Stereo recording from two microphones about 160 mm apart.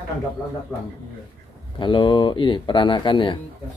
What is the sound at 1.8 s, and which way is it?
Speech, 30° left (ahead or behind).